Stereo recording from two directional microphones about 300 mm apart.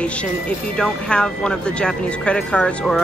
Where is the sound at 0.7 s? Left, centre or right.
Centre.